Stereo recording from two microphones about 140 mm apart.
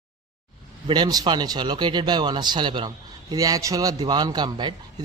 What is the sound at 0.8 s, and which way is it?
Speech, 30° right (ahead or behind).